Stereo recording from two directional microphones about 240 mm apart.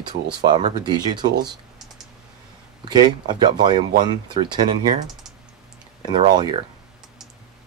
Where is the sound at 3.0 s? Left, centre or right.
Centre.